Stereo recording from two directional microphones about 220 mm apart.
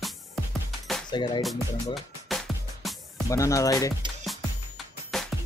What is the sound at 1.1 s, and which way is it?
Speech, 20° left (ahead or behind).